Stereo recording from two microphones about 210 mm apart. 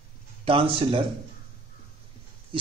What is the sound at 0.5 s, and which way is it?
Speech, 25° right (ahead or behind).